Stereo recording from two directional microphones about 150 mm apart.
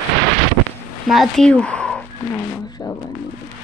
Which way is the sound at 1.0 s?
Centre (ahead or behind).